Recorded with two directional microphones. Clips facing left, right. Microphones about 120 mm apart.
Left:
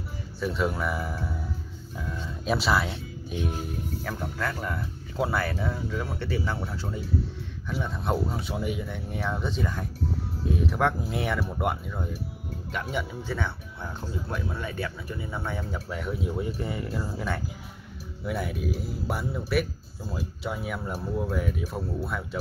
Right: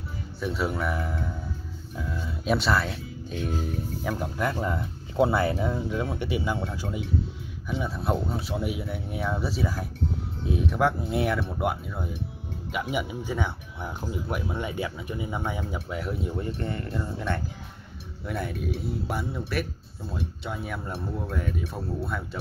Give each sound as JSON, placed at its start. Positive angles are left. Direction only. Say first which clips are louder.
{"t": 0.4, "sound": "speech", "louder": "left 1 dB", "side_deg": 0}
{"t": 3.3, "sound": "music", "louder": "right 1 dB", "side_deg": 10}
{"t": 4.0, "sound": "speech", "louder": "right 5 dB", "side_deg": -15}